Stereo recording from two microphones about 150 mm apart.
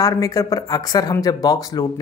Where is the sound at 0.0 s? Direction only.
20° left (ahead or behind).